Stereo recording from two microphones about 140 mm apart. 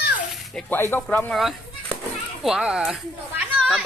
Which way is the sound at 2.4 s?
5° right (ahead or behind).